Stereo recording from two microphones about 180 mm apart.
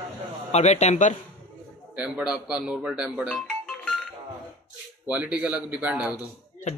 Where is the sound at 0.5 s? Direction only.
40° left (ahead or behind).